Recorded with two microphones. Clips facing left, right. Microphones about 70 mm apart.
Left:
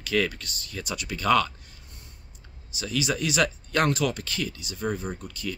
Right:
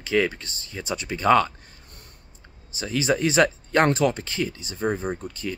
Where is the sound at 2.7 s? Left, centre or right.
Right.